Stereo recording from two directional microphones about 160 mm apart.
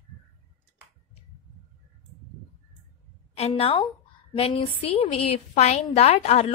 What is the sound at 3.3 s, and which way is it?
A woman's voice, 40° left (ahead or behind).